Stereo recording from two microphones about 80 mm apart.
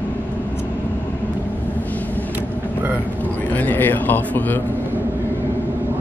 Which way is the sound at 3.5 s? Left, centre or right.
Left.